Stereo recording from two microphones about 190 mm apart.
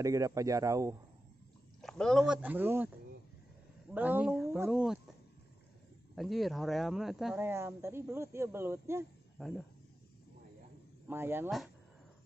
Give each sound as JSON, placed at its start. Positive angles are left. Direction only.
{"t": 0.0, "sound": "speech", "side_deg": -15}
{"t": 1.8, "sound": "speech", "side_deg": 0}
{"t": 3.9, "sound": "speech", "side_deg": -10}
{"t": 6.1, "sound": "speech", "side_deg": 0}
{"t": 7.3, "sound": "speech", "side_deg": -10}
{"t": 9.4, "sound": "speech", "side_deg": 0}
{"t": 11.1, "sound": "speech", "side_deg": -10}